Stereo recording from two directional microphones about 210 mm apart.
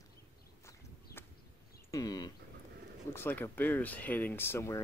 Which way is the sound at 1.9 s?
20° left (ahead or behind).